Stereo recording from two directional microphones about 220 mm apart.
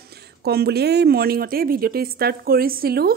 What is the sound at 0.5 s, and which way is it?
Speech, 45° right (ahead or behind).